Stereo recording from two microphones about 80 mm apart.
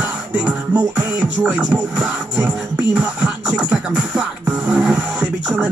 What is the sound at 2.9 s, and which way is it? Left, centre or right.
Music, centre.